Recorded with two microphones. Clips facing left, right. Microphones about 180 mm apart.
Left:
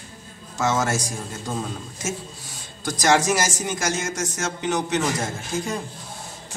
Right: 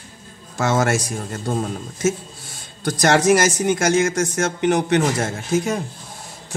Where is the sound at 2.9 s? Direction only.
55° right (ahead or behind).